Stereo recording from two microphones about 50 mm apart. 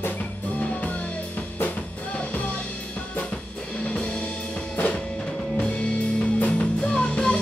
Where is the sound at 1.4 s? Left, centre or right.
Left.